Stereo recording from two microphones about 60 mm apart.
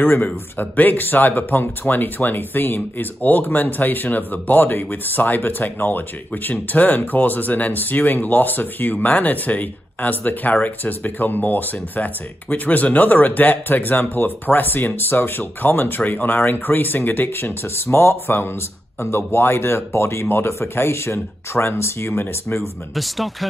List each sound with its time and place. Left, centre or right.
0.0 s speech: left
22.9 s speech: centre